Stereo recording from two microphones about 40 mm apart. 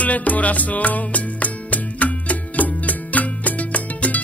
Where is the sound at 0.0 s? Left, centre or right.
Left.